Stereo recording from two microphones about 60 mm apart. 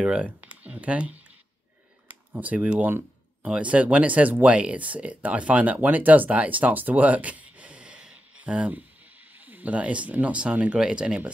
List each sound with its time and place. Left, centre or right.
0.0 s speech: right
2.3 s speech: right